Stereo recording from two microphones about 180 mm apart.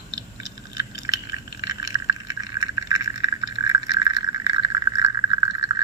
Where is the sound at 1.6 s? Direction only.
20° right (ahead or behind).